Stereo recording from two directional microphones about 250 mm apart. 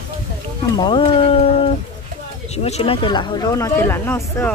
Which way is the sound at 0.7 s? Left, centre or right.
Centre.